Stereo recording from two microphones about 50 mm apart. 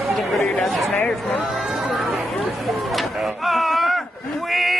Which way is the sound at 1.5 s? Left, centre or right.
Centre.